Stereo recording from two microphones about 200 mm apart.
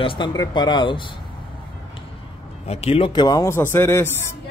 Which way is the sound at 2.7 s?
30° left (ahead or behind).